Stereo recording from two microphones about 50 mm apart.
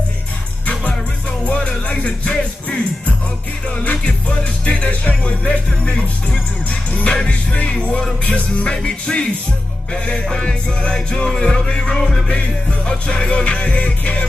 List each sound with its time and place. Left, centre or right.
1.4 s music: left
3.8 s music: left